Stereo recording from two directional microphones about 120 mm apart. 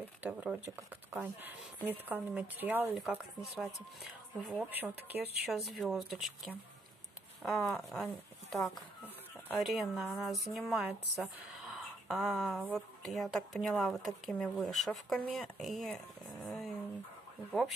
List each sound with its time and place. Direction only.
0.2 s speech: 15° right (ahead or behind)
3.1 s speech: 5° right (ahead or behind)
5.5 s speech: centre (ahead or behind)